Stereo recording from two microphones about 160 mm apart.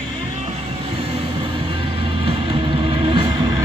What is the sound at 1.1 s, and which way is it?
Vehicle, 35° right (ahead or behind).